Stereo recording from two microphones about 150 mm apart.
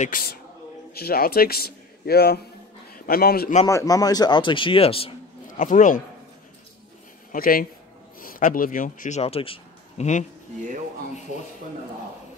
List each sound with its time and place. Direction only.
0.0 s a man's voice: 80° left
3.6 s a man's voice: 25° left (ahead or behind); by 5.1 s 40° left (ahead or behind)
5.6 s speech: 60° left (ahead or behind)
7.3 s speech: 75° left (ahead or behind); by 9.2 s 60° left (ahead or behind)
9.2 s a sound: 40° left (ahead or behind)